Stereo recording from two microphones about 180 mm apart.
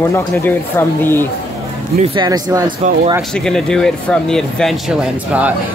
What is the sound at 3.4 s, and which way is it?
Speech, 5° left (ahead or behind).